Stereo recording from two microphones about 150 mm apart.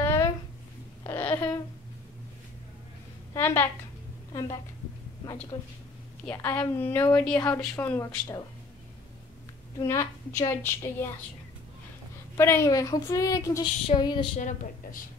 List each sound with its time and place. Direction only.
0.0 s a sound: 20° left (ahead or behind)
3.3 s a woman's voice: 15° left (ahead or behind)
9.8 s a woman's voice: 20° left (ahead or behind)
12.4 s a woman's voice: 15° left (ahead or behind)
13.8 s a sound: 30° left (ahead or behind)
14.3 s speech: 65° left (ahead or behind)